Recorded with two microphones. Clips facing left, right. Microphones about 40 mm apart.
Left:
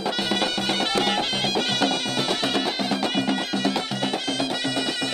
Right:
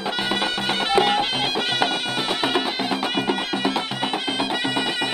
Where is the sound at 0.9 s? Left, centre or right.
Centre.